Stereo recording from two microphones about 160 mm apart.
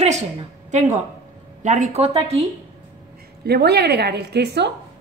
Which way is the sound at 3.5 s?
90° right.